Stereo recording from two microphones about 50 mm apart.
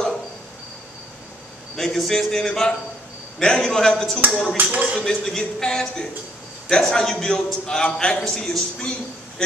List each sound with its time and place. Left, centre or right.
1.8 s a man's voice: centre
4.6 s music: right
4.9 s a man's voice: centre